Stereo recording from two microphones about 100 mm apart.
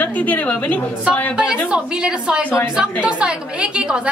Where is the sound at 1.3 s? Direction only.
5° right (ahead or behind).